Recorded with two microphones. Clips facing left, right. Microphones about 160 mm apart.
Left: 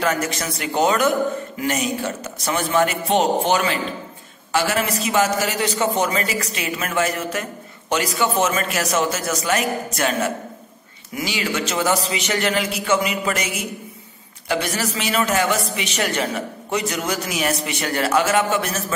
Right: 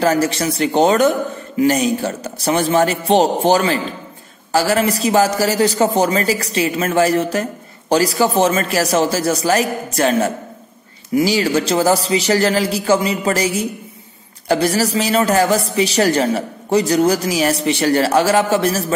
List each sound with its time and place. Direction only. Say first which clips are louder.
0.0 s a man's voice: right 7 dB; 30° right (ahead or behind)